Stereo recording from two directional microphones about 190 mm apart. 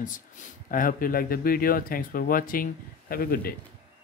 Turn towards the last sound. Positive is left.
turn(degrees=50)  # may be behind; listen again after turning